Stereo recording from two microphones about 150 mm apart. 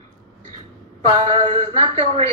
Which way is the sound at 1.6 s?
40° right (ahead or behind).